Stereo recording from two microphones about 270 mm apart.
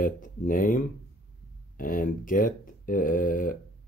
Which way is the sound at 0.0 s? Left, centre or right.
Left.